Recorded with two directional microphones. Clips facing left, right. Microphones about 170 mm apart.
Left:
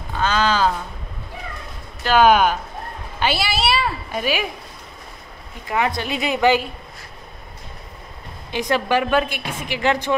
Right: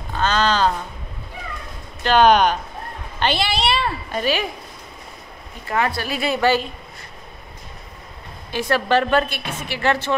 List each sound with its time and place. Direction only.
0.2 s a woman's voice: 10° left (ahead or behind)
2.0 s a woman's voice: 5° left (ahead or behind)
5.7 s a woman's voice: 15° left (ahead or behind)
8.5 s a woman's voice: 15° left (ahead or behind)